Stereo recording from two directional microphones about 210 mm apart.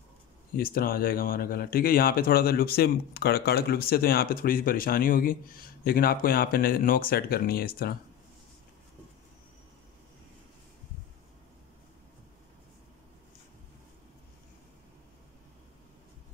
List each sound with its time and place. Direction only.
0.5 s speech: 45° left (ahead or behind)